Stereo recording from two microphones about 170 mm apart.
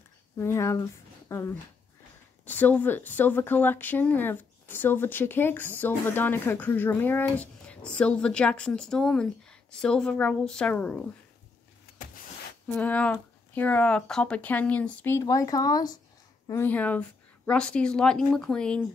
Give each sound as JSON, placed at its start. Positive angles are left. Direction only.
{"t": 0.4, "sound": "a woman's voice", "side_deg": 15}
{"t": 12.6, "sound": "speech", "side_deg": 10}
{"t": 16.4, "sound": "a woman's voice", "side_deg": 10}